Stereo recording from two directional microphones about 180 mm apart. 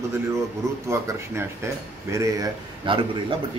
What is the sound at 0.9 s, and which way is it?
Speech, 15° right (ahead or behind).